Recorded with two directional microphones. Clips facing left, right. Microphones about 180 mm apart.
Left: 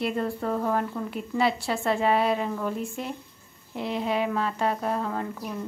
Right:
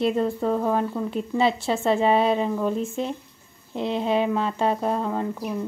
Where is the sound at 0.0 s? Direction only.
20° right (ahead or behind).